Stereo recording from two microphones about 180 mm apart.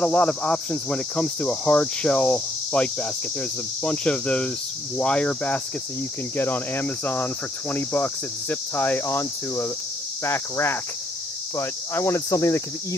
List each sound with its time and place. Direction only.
0.0 s cricket: 5° left (ahead or behind)